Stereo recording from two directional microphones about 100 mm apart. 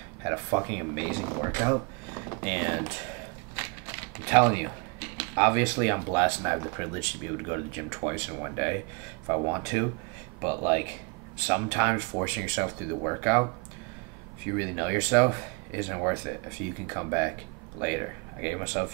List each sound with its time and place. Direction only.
0.2 s speech: 20° right (ahead or behind)